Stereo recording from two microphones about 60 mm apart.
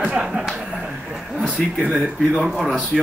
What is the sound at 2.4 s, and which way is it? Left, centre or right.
Speech, centre.